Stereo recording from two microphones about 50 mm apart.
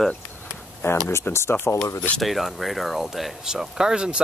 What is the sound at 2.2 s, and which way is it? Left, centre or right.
Speech, centre.